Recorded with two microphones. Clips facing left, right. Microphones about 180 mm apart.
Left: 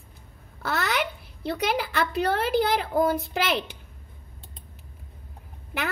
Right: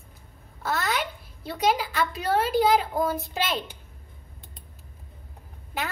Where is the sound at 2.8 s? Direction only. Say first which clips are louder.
Left 3 dB; 60° left (ahead or behind).